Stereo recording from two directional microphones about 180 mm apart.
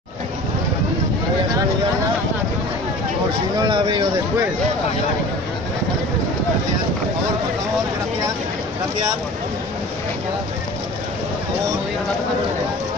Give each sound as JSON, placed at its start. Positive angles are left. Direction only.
{"t": 3.6, "sound": "speech", "side_deg": -25}